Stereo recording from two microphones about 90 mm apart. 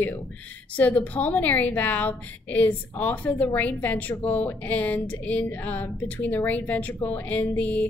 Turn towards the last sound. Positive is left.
turn(degrees=20)  # may be behind; listen again after turning